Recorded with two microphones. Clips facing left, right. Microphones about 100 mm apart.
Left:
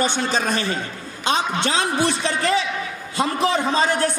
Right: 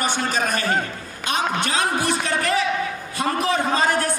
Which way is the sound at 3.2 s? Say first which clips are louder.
Left 1 dB; 25° left (ahead or behind).